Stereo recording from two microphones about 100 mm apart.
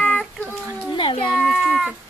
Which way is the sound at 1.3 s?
Centre (ahead or behind).